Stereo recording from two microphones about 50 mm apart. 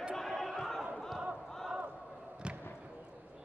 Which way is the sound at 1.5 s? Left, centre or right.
Centre.